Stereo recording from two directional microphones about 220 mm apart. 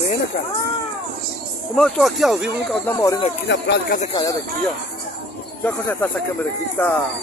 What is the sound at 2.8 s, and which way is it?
Speech, 15° left (ahead or behind).